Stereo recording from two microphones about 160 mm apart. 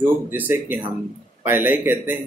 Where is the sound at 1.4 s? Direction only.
10° right (ahead or behind).